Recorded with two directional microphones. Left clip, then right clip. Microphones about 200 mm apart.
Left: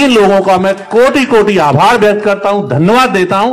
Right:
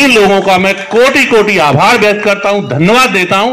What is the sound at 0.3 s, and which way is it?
A man's voice, 40° right (ahead or behind).